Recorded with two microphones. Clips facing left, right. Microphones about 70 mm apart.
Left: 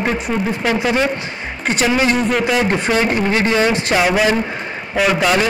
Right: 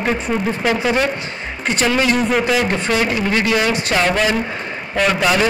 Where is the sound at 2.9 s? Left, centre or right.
Left.